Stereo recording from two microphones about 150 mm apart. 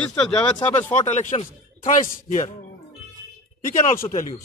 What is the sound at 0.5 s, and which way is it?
Speech, 15° left (ahead or behind).